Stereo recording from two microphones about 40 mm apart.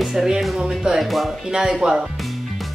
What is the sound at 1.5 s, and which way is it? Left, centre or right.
Speech, centre.